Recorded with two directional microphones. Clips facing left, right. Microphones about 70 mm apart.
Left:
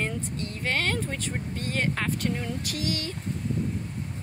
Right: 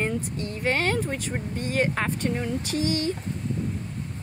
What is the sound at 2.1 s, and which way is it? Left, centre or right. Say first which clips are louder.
Speech: right 3 dB; right.